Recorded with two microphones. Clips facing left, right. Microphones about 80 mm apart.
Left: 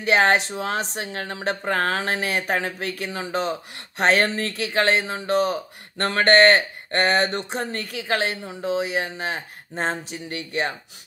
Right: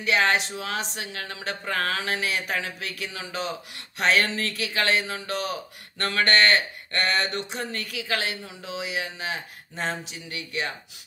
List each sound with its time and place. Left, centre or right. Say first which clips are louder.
0.0 s speech: left 4 dB; left